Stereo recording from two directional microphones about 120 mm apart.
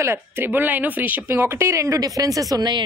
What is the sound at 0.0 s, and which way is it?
A woman's voice, 20° right (ahead or behind).